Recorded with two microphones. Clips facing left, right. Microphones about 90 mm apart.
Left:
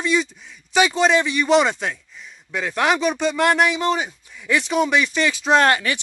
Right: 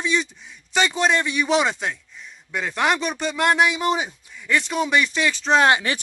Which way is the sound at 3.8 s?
15° right (ahead or behind).